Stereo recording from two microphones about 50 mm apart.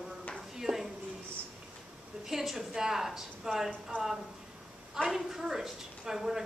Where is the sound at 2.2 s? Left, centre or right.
Centre.